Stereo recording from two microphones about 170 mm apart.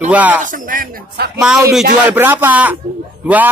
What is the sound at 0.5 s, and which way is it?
Speech, 55° right (ahead or behind).